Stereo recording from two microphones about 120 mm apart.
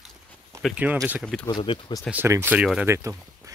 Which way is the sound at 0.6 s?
10° right (ahead or behind).